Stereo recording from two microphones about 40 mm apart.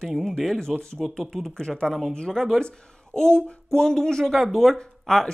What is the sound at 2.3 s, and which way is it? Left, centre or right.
Speech, centre.